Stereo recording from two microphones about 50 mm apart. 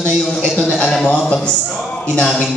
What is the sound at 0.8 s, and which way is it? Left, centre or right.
Speech, centre.